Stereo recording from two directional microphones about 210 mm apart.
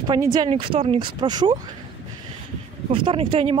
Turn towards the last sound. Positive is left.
turn(degrees=-25)  # may be behind; listen again after turning